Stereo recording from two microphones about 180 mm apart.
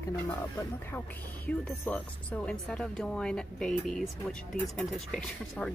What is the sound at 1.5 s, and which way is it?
A woman's voice, 5° left (ahead or behind).